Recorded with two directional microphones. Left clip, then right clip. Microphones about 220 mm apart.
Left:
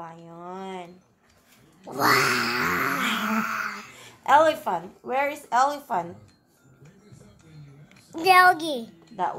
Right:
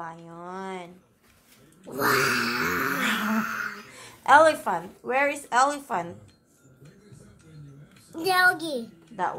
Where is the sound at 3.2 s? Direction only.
25° left (ahead or behind).